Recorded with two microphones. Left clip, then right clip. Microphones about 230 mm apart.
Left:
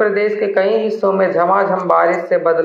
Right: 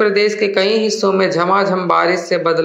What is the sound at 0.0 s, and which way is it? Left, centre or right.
A man's voice, right.